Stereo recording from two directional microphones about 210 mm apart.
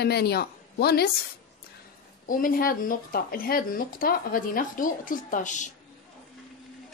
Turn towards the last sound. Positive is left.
turn(degrees=35)  # may be behind; listen again after turning